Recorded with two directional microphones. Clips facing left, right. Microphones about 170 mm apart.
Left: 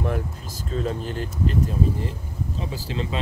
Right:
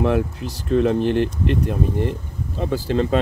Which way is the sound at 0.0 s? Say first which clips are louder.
Right 8 dB; 85° right.